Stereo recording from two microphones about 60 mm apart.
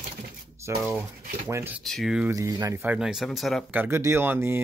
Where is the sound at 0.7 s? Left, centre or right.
Right.